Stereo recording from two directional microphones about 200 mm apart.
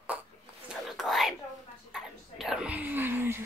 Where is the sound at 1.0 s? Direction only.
Centre (ahead or behind).